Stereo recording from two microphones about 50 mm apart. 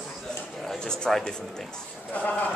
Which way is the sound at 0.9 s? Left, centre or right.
Centre.